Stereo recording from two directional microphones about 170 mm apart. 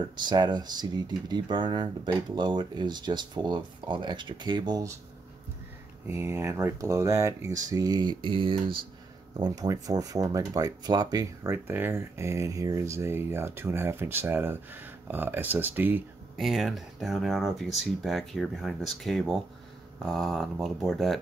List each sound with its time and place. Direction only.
0.1 s speech: 25° right (ahead or behind)
6.0 s speech: 15° right (ahead or behind)
16.3 s speech: centre (ahead or behind)